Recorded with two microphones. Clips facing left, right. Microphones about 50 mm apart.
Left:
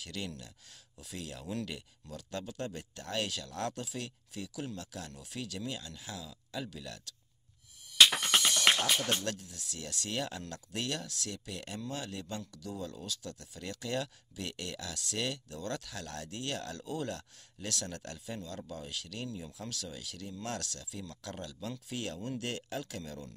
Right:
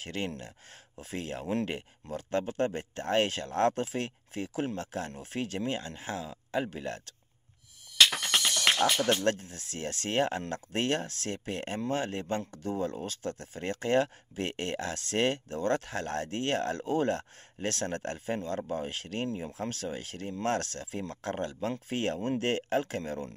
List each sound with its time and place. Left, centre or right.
0.0 s speech: right
8.0 s music: centre
9.0 s speech: right